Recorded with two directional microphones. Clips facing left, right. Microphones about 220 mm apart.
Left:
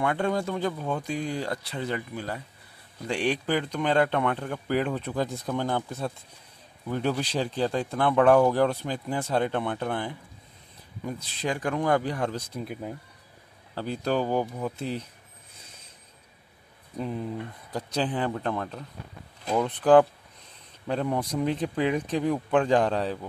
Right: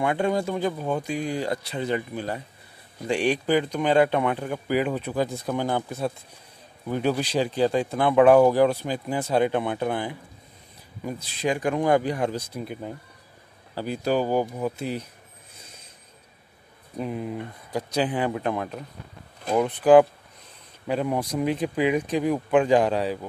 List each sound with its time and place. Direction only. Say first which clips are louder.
0.0 s speech: right 3 dB; 15° right (ahead or behind)
13.7 s speech: right 3 dB; 10° right (ahead or behind)
17.0 s speech: right 2 dB; 15° right (ahead or behind)